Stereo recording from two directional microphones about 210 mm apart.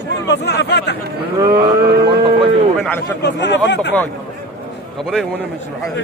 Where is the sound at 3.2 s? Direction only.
55° left (ahead or behind).